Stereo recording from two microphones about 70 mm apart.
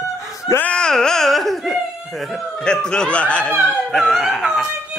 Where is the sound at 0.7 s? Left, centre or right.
Centre.